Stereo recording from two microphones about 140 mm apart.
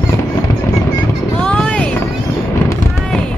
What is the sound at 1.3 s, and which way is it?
Vehicle, 5° left (ahead or behind).